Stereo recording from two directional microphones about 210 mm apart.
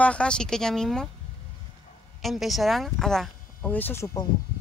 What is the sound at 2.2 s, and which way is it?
Speech, centre (ahead or behind).